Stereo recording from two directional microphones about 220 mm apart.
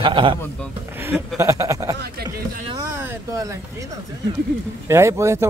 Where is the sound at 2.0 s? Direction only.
45° right (ahead or behind).